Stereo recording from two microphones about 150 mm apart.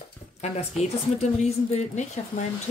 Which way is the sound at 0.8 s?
45° left (ahead or behind).